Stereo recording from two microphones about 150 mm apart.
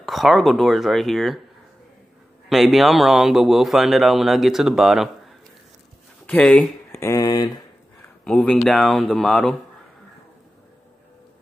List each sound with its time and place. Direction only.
0.0 s a man's voice: centre (ahead or behind)
2.5 s a man's voice: centre (ahead or behind)
6.2 s speech: 5° left (ahead or behind)
7.0 s speech: 20° left (ahead or behind)
8.2 s a man's voice: 5° left (ahead or behind)